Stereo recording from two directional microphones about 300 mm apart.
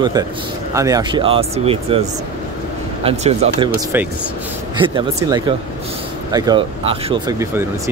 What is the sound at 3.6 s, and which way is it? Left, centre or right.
Speech, centre.